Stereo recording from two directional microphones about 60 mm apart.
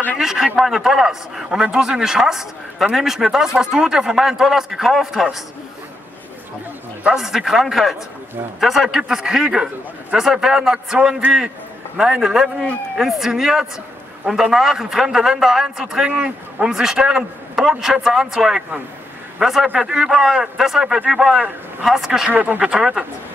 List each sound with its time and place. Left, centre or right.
0.2 s a man's voice: centre
7.2 s a man's voice: centre
22.3 s speech: right
22.6 s a man's voice: centre